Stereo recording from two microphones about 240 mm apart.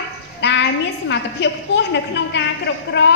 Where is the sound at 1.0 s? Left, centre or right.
Left.